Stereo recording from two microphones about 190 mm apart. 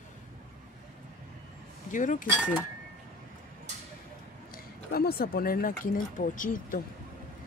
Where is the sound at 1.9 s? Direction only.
40° left (ahead or behind).